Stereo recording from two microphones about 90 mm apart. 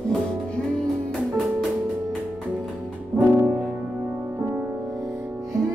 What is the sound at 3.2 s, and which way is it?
Music, 25° right (ahead or behind).